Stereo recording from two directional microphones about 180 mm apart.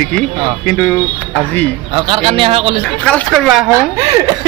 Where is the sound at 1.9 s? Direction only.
30° right (ahead or behind).